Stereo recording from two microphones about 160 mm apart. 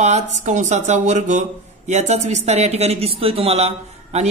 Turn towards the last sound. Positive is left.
turn(degrees=-40)  # may be behind; listen again after turning